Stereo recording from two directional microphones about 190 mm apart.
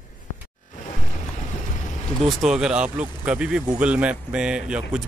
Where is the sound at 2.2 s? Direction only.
5° right (ahead or behind).